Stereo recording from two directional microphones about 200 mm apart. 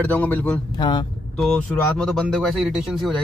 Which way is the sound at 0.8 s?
20° left (ahead or behind).